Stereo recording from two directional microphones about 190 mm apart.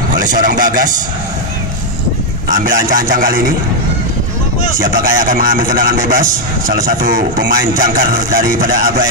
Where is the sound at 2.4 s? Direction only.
45° right (ahead or behind).